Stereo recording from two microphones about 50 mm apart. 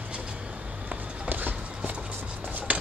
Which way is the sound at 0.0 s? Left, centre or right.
Centre.